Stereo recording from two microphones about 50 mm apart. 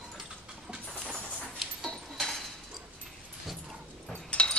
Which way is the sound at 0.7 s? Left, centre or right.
Centre.